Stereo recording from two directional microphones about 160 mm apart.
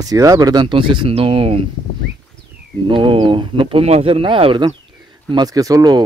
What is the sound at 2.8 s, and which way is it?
Speech, 35° right (ahead or behind).